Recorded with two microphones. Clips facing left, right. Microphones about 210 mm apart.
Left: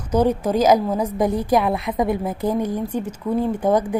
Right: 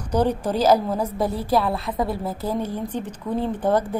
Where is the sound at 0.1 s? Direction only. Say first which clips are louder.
Left 3 dB; 10° left (ahead or behind).